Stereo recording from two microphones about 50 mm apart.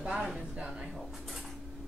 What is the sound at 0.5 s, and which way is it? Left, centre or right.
Speech, right.